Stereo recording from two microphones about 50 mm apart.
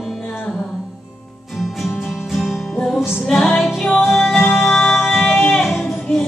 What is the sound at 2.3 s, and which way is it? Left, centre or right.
Music, centre.